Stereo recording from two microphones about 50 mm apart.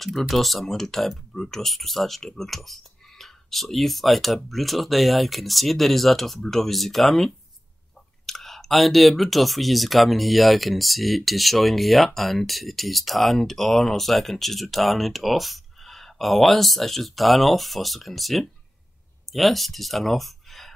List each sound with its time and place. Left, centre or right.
0.0 s speech: centre